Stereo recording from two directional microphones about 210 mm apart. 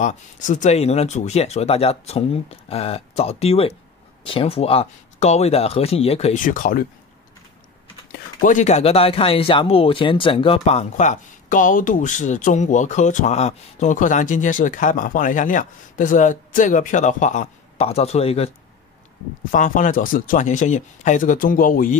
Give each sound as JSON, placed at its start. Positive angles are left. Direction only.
{"t": 0.0, "sound": "speech", "side_deg": 35}
{"t": 8.5, "sound": "speech", "side_deg": 35}
{"t": 19.5, "sound": "speech", "side_deg": 40}